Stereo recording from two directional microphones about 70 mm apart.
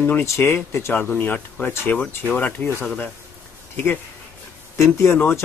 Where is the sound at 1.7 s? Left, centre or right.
Left.